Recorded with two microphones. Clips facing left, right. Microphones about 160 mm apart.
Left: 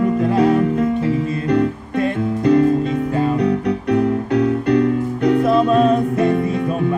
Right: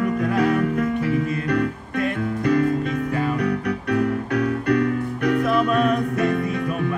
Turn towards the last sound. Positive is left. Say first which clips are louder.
# left 5 dB
turn(degrees=25)  # may be behind; listen again after turning